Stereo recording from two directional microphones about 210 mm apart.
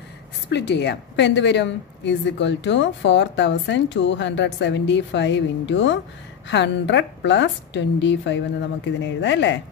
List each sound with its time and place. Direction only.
0.5 s a woman's voice: 55° left (ahead or behind)